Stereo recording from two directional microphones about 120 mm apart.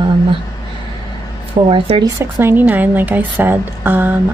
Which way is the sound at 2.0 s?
20° right (ahead or behind).